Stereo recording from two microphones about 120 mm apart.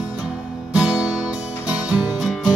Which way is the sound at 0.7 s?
5° right (ahead or behind).